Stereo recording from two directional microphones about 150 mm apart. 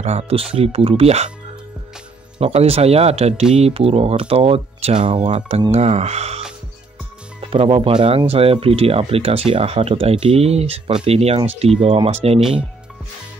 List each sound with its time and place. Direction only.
0.0 s speech: 45° right (ahead or behind)
2.3 s speech: 40° right (ahead or behind)
7.4 s speech: 40° right (ahead or behind)
12.4 s speech: 5° right (ahead or behind)